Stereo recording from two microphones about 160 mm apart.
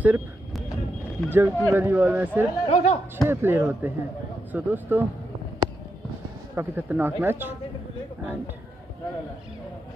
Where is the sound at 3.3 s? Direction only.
15° right (ahead or behind).